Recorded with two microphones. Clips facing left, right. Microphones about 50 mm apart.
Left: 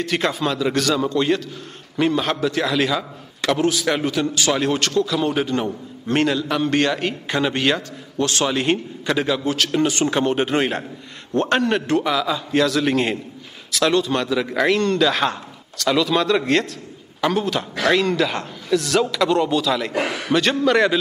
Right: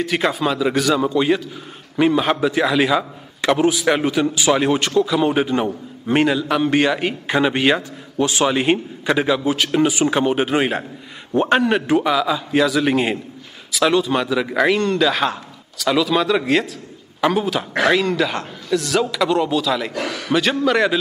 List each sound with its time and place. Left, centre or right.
0.0 s a man's voice: centre
19.9 s a man's voice: left
20.2 s a man's voice: centre